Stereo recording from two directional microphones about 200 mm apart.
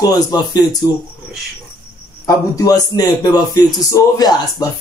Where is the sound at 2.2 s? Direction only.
15° left (ahead or behind).